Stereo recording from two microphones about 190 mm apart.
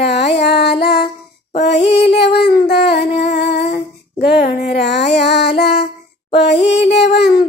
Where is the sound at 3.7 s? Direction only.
55° left (ahead or behind).